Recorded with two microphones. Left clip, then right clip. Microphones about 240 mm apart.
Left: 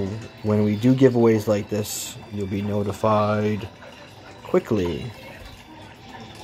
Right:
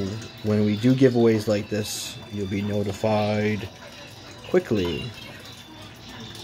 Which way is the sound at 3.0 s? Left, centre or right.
Left.